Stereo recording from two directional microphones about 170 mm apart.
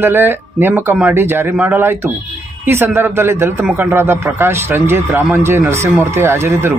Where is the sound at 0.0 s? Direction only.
15° right (ahead or behind).